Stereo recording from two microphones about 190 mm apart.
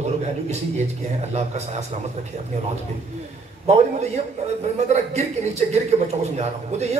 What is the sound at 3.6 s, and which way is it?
A man's voice, 35° right (ahead or behind).